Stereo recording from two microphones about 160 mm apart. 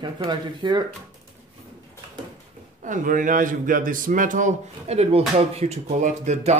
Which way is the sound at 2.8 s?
55° right (ahead or behind).